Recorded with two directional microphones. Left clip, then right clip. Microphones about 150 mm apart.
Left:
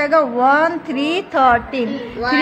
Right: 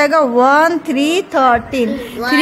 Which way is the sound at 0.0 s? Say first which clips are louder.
Right 3 dB; 45° right (ahead or behind).